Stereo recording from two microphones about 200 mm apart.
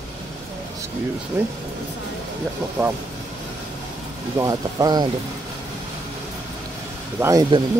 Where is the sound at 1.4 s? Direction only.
10° right (ahead or behind).